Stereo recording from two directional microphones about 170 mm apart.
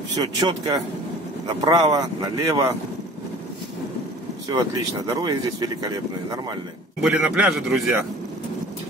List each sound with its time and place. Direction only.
0.2 s speech: 20° right (ahead or behind)
4.5 s speech: 20° right (ahead or behind)
7.0 s speech: 5° right (ahead or behind)